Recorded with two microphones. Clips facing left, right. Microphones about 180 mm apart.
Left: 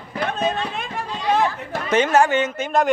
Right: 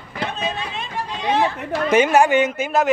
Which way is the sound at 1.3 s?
50° left (ahead or behind).